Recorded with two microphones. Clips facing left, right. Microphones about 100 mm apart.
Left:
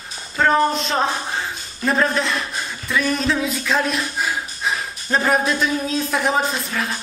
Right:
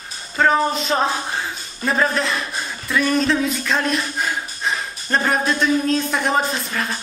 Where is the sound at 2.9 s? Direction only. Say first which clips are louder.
Right 2 dB; centre (ahead or behind).